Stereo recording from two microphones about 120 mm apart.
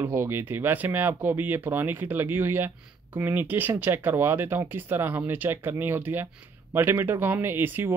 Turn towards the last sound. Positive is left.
turn(degrees=-15)  # may be behind; listen again after turning